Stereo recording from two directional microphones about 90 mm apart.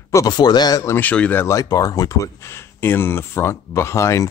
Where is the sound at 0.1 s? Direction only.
40° left (ahead or behind).